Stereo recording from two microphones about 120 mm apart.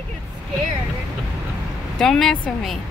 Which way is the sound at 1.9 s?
5° left (ahead or behind).